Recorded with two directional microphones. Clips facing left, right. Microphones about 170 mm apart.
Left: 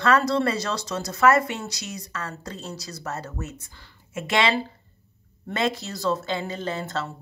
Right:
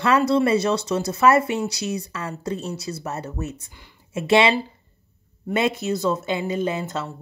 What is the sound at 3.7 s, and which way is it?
Speech, 15° right (ahead or behind).